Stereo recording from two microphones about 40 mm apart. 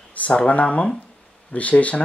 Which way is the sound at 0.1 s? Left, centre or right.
Left.